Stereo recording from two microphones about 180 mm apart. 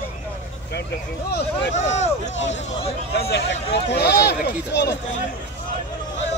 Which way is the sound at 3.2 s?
65° left (ahead or behind).